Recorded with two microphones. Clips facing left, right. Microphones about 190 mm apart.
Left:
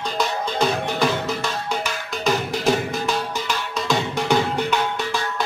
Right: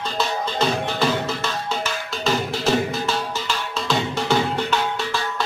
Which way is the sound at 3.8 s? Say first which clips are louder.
Left 1 dB; 15° left (ahead or behind).